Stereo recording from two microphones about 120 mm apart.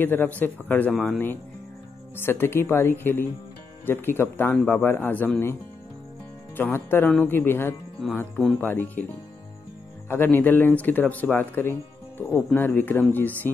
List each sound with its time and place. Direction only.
0.0 s speech: 15° left (ahead or behind)